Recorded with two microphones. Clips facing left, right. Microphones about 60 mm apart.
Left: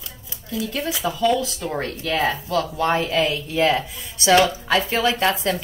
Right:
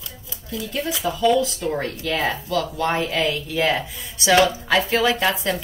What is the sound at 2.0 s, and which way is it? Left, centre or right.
Speech, left.